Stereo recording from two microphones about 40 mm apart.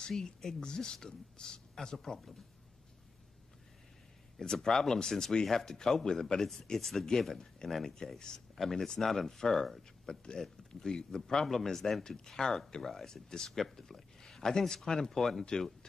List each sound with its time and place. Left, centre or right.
0.0 s speech: centre
4.4 s speech: centre
8.5 s speech: centre
10.0 s speech: left